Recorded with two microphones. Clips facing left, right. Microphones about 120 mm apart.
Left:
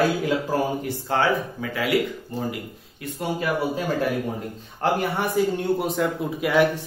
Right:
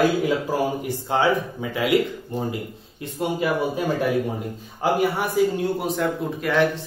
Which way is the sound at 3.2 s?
20° right (ahead or behind).